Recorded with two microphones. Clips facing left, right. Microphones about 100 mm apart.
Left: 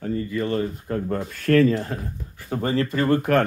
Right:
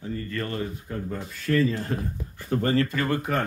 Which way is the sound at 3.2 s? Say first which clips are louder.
Left 7 dB; 65° left (ahead or behind).